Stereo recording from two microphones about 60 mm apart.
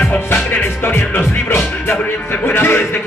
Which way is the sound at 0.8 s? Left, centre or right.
Left.